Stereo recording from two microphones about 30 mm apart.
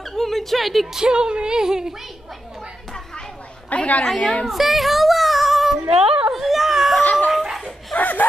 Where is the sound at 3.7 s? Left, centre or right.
Left.